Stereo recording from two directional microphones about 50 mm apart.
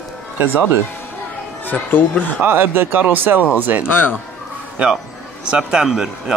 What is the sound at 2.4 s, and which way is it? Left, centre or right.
Speech, right.